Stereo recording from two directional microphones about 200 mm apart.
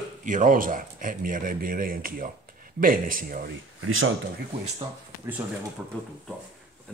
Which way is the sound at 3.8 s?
90° right.